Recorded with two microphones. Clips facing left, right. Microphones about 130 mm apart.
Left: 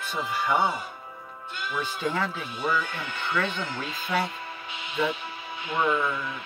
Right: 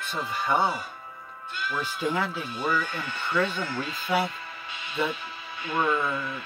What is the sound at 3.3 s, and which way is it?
Speech, 5° right (ahead or behind).